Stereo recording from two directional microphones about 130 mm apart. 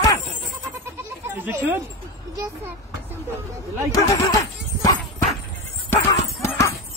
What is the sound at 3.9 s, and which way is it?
Speech, 25° left (ahead or behind).